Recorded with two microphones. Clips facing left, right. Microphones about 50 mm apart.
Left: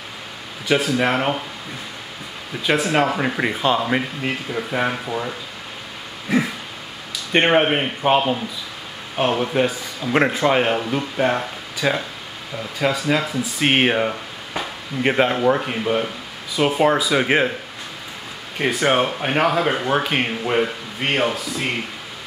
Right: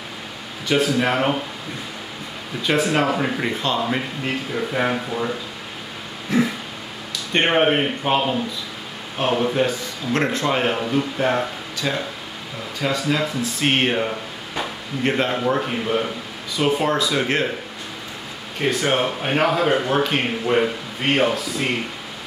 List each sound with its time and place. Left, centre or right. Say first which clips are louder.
0.7 s speech: left 1 dB; centre
2.6 s speech: left 1 dB; centre
3.3 s speech: left 3 dB; centre
6.2 s throat clearing: even; centre
7.3 s speech: left 1 dB; centre
9.1 s speech: left 1 dB; centre
11.8 s speech: left 4 dB; left
12.7 s speech: left 2 dB; centre
18.6 s speech: left 2 dB; centre